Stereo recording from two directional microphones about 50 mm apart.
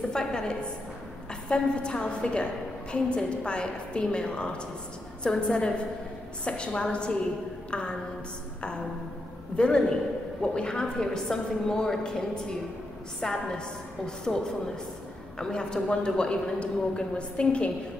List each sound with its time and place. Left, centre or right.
0.1 s a woman's voice: centre
9.6 s a woman's voice: centre